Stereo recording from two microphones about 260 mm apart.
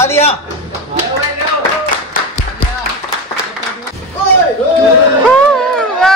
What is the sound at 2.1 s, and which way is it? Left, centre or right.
Music, left.